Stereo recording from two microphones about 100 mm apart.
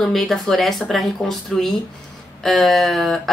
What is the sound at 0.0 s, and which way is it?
Speech, centre (ahead or behind).